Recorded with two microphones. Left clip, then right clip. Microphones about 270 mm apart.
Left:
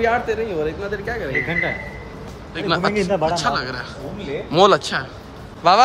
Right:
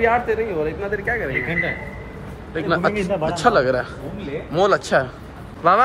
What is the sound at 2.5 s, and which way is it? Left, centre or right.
A woman's voice, centre.